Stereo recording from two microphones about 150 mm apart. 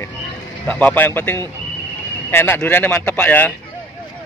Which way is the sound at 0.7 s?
10° left (ahead or behind).